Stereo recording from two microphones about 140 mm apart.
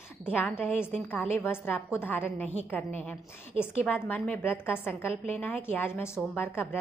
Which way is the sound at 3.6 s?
15° left (ahead or behind).